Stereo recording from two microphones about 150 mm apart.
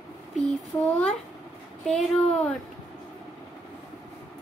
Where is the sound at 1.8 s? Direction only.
5° left (ahead or behind).